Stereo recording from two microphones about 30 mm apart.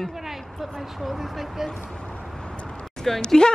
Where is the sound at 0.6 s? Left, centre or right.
Centre.